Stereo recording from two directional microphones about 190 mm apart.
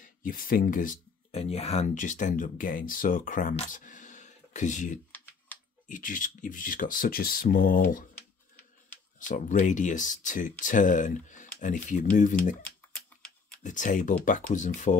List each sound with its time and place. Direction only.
0.0 s speech: 45° left (ahead or behind)
1.3 s speech: 30° left (ahead or behind)
5.5 s computer keyboard: 10° left (ahead or behind)
5.9 s speech: 45° left (ahead or behind)
9.3 s speech: 40° left (ahead or behind)
12.6 s typing: 5° left (ahead or behind)
13.6 s speech: 40° left (ahead or behind)